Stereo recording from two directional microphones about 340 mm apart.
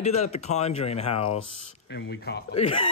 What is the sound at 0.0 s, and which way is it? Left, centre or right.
Speech, centre.